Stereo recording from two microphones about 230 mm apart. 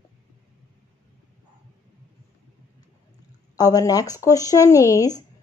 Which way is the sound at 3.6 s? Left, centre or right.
Centre.